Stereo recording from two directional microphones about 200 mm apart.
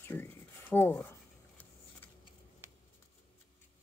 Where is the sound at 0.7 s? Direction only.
10° left (ahead or behind).